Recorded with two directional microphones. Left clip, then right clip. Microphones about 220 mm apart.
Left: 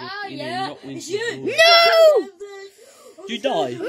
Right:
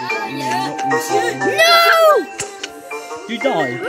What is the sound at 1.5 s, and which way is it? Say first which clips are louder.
Speech: right 1 dB; 5° left (ahead or behind).